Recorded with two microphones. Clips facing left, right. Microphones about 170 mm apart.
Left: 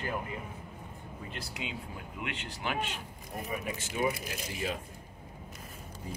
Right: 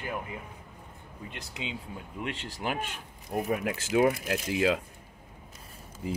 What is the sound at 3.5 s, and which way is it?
Speech, 85° right.